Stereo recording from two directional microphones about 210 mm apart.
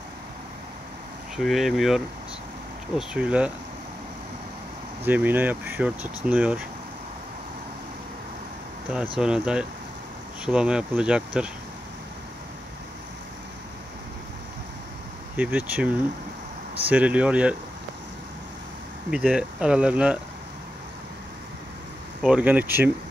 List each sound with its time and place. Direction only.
1.3 s speech: centre (ahead or behind)
5.0 s speech: 10° right (ahead or behind)
9.2 s speech: 5° right (ahead or behind)
15.3 s speech: 5° right (ahead or behind)
19.0 s speech: 5° right (ahead or behind)
22.2 s speech: 5° right (ahead or behind)